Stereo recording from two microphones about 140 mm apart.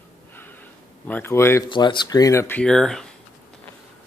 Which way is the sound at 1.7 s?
35° left (ahead or behind).